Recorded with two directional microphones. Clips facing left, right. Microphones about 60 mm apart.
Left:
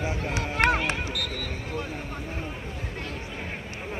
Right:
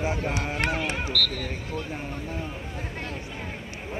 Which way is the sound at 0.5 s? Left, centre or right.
Left.